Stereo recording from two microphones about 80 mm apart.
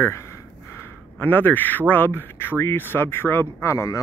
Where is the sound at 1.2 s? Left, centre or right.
Left.